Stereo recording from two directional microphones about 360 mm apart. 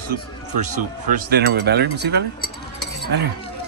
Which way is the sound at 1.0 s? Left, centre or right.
Right.